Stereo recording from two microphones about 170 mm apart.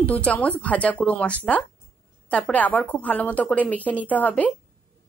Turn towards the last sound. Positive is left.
turn(degrees=10)  # may be behind; listen again after turning